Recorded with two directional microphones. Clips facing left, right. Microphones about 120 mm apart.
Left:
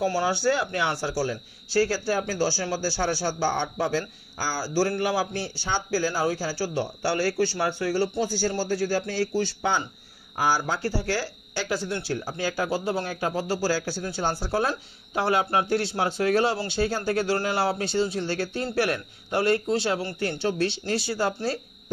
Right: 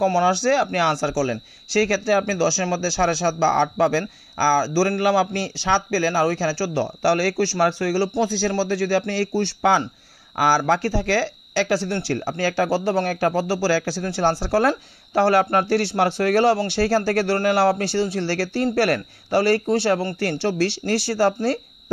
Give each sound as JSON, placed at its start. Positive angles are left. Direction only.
{"t": 0.0, "sound": "a man's voice", "side_deg": -70}